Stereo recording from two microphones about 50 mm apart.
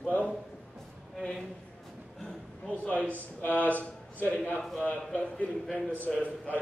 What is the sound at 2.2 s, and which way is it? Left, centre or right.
Speech, left.